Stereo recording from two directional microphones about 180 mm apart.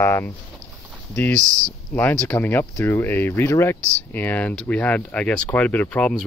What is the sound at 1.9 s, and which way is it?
Speech, 10° left (ahead or behind).